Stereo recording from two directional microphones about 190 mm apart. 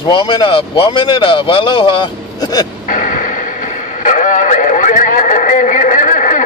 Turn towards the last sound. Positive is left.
turn(degrees=45)  # may be behind; listen again after turning